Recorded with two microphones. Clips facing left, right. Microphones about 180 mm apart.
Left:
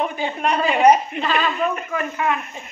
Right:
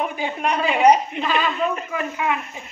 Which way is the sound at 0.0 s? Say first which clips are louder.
Left 1 dB; 10° right (ahead or behind).